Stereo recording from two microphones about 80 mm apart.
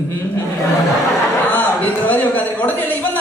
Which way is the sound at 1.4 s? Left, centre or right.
Left.